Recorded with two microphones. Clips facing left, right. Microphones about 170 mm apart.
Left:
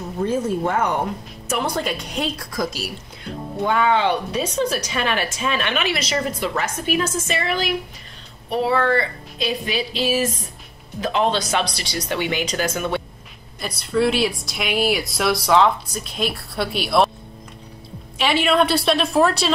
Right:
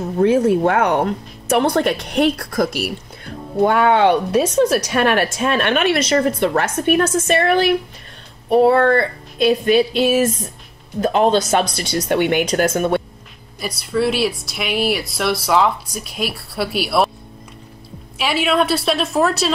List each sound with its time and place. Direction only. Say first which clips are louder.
0.2 s speech: right 7 dB; 70° right (ahead or behind); by 13.0 s 50° right (ahead or behind)
13.6 s speech: right 1 dB; 10° right (ahead or behind)
18.1 s speech: even; 5° right (ahead or behind)